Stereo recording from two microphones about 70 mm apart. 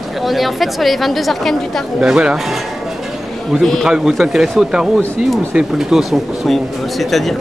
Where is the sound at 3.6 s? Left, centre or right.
Centre.